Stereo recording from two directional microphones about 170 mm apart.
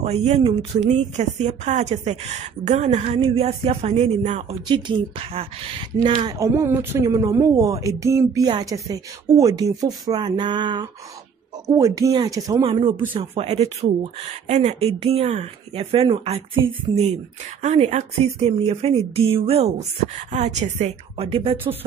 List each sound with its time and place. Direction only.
0.0 s speech: 40° right (ahead or behind)
0.8 s speech: 45° right (ahead or behind)
4.6 s a woman's voice: 30° right (ahead or behind)
6.3 s a woman's voice: 20° right (ahead or behind)
13.1 s speech: 35° right (ahead or behind)